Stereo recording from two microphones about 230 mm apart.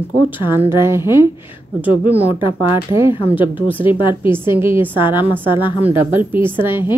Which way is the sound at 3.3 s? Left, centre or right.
Centre.